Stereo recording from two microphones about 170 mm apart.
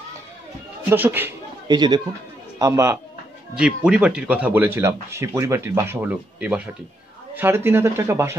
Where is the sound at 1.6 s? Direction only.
25° right (ahead or behind).